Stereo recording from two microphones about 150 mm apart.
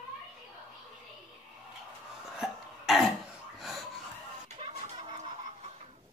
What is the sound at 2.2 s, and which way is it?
Cough, 5° right (ahead or behind).